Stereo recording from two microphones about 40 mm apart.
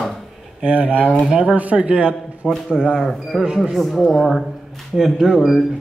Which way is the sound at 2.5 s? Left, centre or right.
Centre.